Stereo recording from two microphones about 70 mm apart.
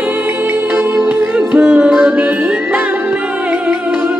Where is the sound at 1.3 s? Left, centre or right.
Centre.